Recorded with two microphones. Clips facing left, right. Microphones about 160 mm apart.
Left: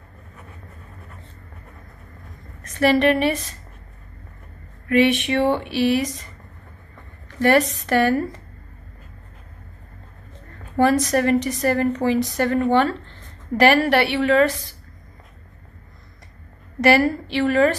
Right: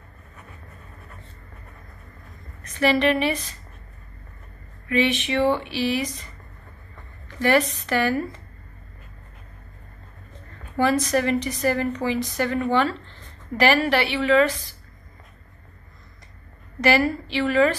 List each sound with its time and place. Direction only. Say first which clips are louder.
2.6 s a woman's voice: left 3 dB; 45° left (ahead or behind)
4.8 s a woman's voice: left 5 dB; 50° left (ahead or behind)
7.3 s a woman's voice: left 3 dB; 45° left (ahead or behind)
10.8 s a woman's voice: left 3 dB; 45° left (ahead or behind)
16.8 s a woman's voice: left 3 dB; 50° left (ahead or behind)